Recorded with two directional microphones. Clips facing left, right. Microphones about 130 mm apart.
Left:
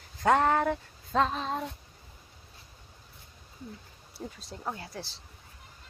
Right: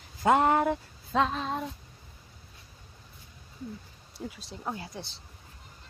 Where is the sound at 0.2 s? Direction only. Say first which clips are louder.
Right 1 dB; 15° right (ahead or behind).